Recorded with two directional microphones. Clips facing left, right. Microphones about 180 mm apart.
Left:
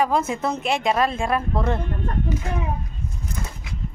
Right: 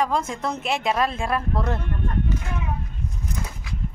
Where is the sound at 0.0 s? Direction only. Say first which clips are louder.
Left 3 dB; 5° left (ahead or behind).